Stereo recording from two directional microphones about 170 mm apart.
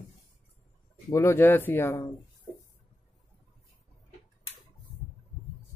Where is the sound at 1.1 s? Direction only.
15° left (ahead or behind).